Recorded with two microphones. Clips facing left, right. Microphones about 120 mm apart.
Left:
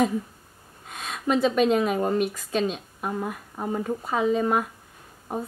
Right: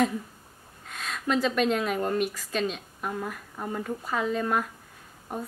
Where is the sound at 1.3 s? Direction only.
5° left (ahead or behind).